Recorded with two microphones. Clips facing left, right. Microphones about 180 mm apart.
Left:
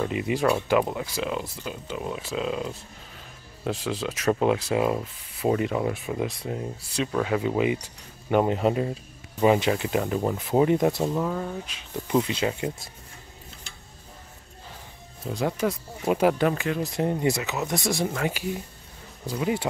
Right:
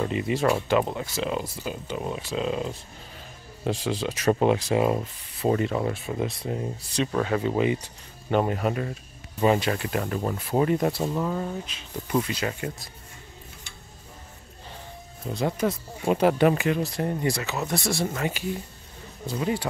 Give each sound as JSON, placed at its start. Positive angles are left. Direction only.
{"t": 0.1, "sound": "speech", "side_deg": 10}
{"t": 1.1, "sound": "speech", "side_deg": 0}
{"t": 6.5, "sound": "speech", "side_deg": 0}
{"t": 9.4, "sound": "speech", "side_deg": 10}
{"t": 11.1, "sound": "speech", "side_deg": 5}
{"t": 11.6, "sound": "speech", "side_deg": 20}
{"t": 15.4, "sound": "speech", "side_deg": -10}
{"t": 16.1, "sound": "speech", "side_deg": 5}
{"t": 16.8, "sound": "speech", "side_deg": 20}